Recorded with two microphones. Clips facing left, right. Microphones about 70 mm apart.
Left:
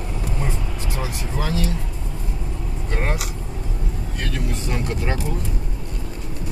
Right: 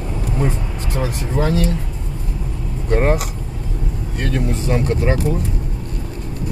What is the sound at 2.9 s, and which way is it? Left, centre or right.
Speech, right.